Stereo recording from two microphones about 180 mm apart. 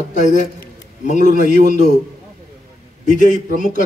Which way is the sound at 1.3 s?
50° right (ahead or behind).